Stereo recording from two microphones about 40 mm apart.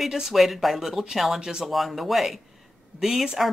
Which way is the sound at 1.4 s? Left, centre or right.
Centre.